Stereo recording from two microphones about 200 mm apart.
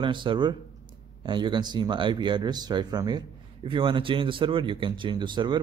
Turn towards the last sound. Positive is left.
turn(degrees=-20)  # may be behind; listen again after turning